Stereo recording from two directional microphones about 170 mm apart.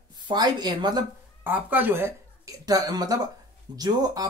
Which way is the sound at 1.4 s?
10° right (ahead or behind).